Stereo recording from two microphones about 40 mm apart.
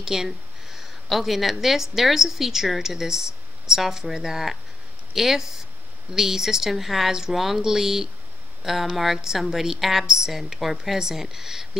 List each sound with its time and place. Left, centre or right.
0.0 s a woman's voice: centre